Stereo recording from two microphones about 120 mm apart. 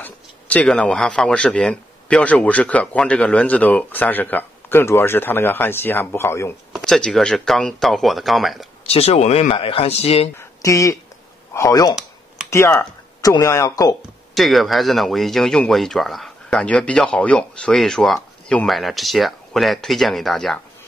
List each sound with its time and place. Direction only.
0.0 s speech: 10° left (ahead or behind)
6.7 s speech: centre (ahead or behind)
8.8 s speech: 55° left (ahead or behind)
10.3 s speech: 25° left (ahead or behind)
12.4 s a sound: 20° left (ahead or behind)
13.2 s speech: 30° left (ahead or behind)
14.3 s speech: centre (ahead or behind)